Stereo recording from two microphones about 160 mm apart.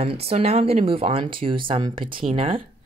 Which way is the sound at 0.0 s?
40° right (ahead or behind).